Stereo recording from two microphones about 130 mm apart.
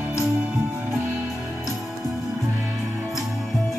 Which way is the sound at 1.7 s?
Centre (ahead or behind).